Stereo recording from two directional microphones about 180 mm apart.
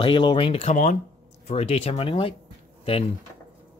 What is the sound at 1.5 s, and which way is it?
Speech, 35° left (ahead or behind).